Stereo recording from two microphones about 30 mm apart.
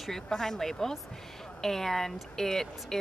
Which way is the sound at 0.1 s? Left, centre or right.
Centre.